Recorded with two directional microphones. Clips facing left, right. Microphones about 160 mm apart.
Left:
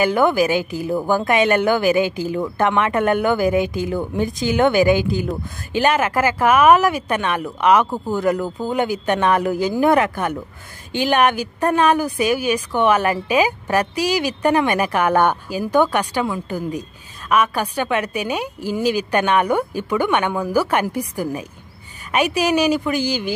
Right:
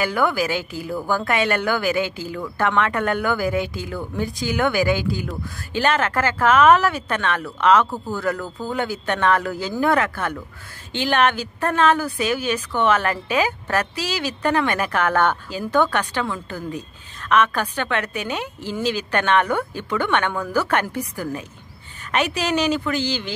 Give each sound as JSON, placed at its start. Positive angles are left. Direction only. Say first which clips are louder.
{"t": 0.0, "sound": "a woman's voice", "louder": "left 5 dB", "side_deg": 20}